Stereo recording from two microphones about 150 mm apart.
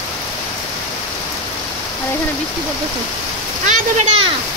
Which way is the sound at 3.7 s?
50° right (ahead or behind).